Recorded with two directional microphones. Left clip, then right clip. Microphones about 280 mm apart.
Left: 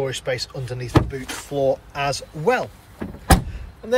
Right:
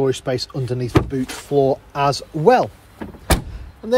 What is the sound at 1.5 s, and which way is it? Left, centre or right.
Speech, right.